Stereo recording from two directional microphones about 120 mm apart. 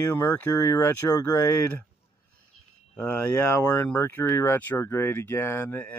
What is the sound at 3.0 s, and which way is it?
Speech, 10° left (ahead or behind).